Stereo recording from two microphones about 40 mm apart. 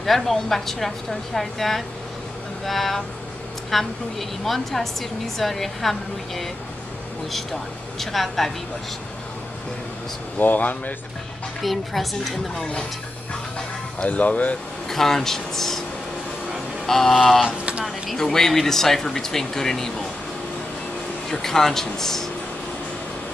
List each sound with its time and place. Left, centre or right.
0.0 s a woman's voice: centre
8.0 s a woman's voice: centre
10.4 s speech: left
11.6 s a woman's voice: centre
13.3 s a sound: left
14.0 s speech: left
14.9 s speech: centre
16.8 s speech: centre
17.5 s speech: right
18.1 s speech: centre
21.3 s speech: centre